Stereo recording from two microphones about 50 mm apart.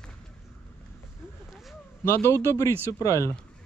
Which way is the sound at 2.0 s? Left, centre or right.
Left.